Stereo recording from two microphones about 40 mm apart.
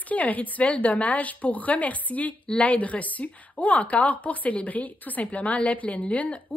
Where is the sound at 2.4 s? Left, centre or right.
Left.